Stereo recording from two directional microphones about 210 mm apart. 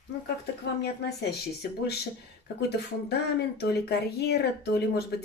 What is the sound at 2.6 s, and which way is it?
Speech, 50° left (ahead or behind).